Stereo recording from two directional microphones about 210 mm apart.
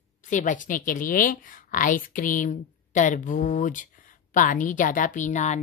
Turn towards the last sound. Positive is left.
turn(degrees=35)  # may be behind; listen again after turning